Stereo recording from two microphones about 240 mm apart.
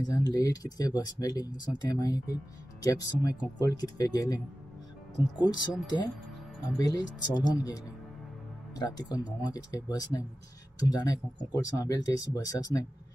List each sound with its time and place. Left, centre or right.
0.0 s speech: centre
8.7 s speech: centre